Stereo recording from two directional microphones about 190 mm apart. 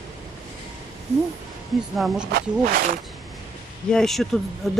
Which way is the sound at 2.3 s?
50° right (ahead or behind).